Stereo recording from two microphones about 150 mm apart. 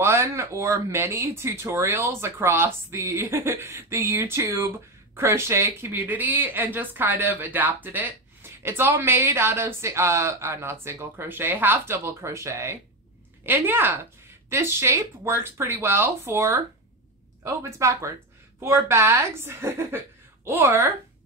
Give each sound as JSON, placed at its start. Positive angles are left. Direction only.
{"t": 0.0, "sound": "speech", "side_deg": -20}